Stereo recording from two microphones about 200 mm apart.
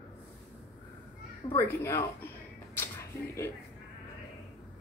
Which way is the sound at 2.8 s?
15° left (ahead or behind).